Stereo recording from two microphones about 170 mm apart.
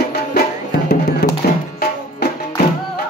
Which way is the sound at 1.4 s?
65° left (ahead or behind).